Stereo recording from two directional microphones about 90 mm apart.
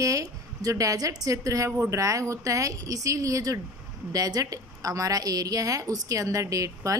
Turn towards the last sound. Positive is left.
turn(degrees=-40)  # may be behind; listen again after turning